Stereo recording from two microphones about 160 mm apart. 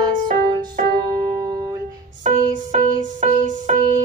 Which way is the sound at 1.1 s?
25° right (ahead or behind).